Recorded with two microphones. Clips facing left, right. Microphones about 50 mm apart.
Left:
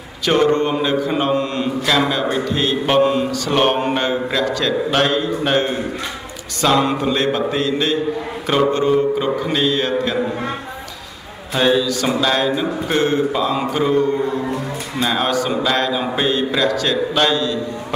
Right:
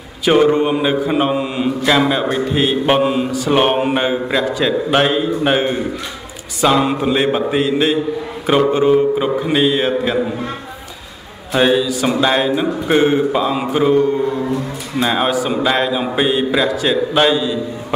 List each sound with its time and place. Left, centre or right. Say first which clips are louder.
0.2 s mantra: right 3 dB; centre
11.5 s mantra: right 2 dB; centre